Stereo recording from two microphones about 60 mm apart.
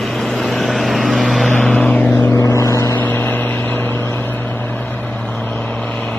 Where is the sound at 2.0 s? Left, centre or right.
Left.